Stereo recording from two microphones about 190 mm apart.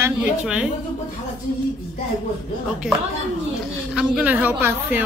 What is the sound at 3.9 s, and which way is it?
A woman's voice, 5° right (ahead or behind).